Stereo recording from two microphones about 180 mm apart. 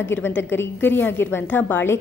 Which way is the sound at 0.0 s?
10° left (ahead or behind).